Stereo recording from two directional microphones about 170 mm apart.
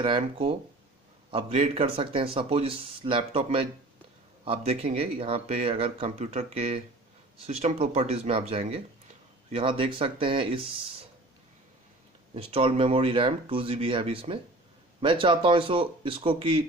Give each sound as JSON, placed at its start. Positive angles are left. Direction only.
{"t": 0.0, "sound": "speech", "side_deg": -30}
{"t": 12.4, "sound": "speech", "side_deg": -30}